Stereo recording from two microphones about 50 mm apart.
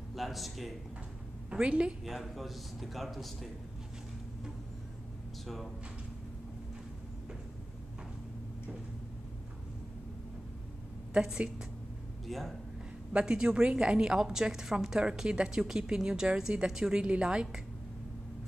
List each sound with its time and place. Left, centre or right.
0.1 s speech: centre
1.5 s a woman's voice: centre
2.0 s speech: centre
11.1 s a woman's voice: centre
12.3 s speech: centre
13.1 s a woman's voice: centre